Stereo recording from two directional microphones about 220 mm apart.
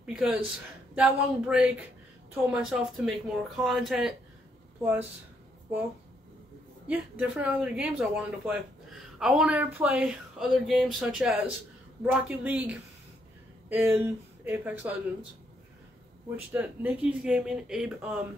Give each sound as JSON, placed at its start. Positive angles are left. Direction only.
{"t": 0.0, "sound": "speech", "side_deg": -5}
{"t": 6.9, "sound": "speech", "side_deg": -5}
{"t": 16.5, "sound": "speech", "side_deg": -5}